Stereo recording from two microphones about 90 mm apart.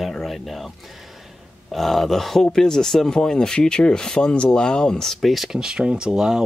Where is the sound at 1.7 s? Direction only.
Centre (ahead or behind).